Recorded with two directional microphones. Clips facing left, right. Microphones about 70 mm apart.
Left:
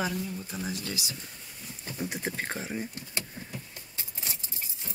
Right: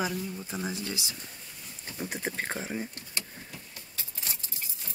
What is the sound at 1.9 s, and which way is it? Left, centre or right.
Speech, centre.